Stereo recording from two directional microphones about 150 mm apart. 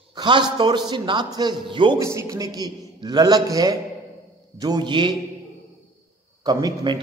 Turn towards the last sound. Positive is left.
turn(degrees=-25)  # may be behind; listen again after turning